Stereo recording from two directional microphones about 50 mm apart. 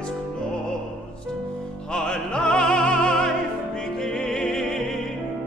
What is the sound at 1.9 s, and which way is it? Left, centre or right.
Music, centre.